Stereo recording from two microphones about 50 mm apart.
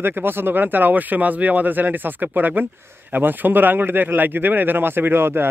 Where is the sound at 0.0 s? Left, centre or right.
Right.